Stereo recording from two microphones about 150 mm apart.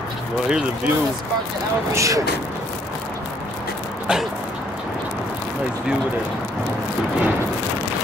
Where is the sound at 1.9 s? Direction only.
20° right (ahead or behind).